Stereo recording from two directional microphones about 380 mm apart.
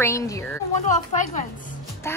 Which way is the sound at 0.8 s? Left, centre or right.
Centre.